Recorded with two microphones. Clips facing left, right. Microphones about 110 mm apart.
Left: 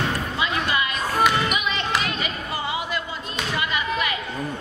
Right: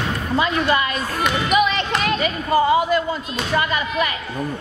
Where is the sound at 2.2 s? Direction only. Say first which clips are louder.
Right 11 dB; 45° right (ahead or behind).